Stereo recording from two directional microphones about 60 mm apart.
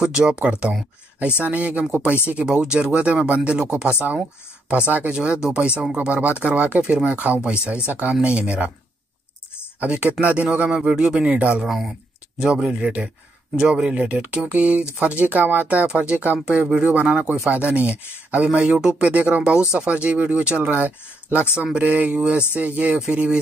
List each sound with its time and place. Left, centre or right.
0.0 s speech: centre
9.8 s speech: right
11.6 s speech: centre
14.0 s speech: right
17.5 s speech: right
18.7 s speech: centre